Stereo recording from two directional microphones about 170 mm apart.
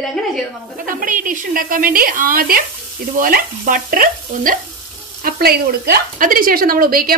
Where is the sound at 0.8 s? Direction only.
55° right (ahead or behind).